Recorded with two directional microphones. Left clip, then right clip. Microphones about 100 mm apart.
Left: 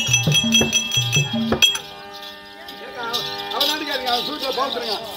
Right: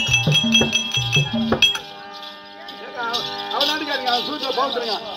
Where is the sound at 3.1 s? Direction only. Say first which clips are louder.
Left 1 dB; 10° right (ahead or behind).